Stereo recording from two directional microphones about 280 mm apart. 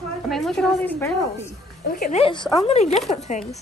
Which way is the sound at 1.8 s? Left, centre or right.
Left.